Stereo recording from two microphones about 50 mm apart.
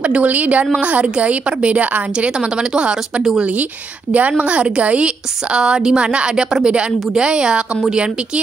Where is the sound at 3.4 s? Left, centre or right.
Right.